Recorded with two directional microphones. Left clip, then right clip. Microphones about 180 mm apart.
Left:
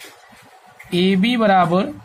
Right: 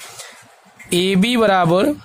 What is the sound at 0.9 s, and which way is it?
Speech, 50° right (ahead or behind).